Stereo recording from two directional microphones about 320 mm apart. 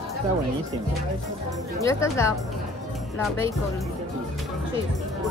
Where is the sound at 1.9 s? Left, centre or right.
Centre.